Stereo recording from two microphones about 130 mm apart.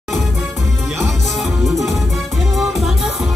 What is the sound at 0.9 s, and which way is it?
Music, centre (ahead or behind).